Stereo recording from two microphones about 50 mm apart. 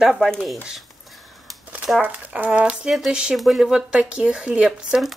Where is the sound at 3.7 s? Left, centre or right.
Centre.